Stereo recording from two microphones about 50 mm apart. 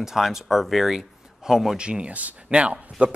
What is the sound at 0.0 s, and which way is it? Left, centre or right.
Speech, centre.